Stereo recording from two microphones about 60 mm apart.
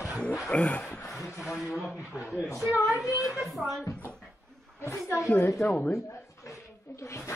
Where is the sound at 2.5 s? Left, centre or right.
Left.